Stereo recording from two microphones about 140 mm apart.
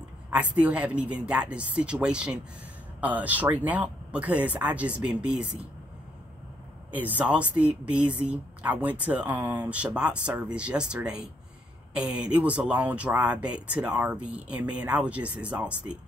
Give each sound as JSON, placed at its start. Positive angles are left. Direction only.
{"t": 0.3, "sound": "speech", "side_deg": -10}
{"t": 6.9, "sound": "speech", "side_deg": -10}